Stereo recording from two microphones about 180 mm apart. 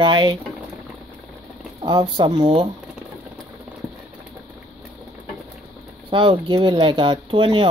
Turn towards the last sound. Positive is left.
turn(degrees=-30)  # may be behind; listen again after turning